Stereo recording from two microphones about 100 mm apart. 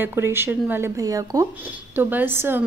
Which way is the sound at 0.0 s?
25° right (ahead or behind).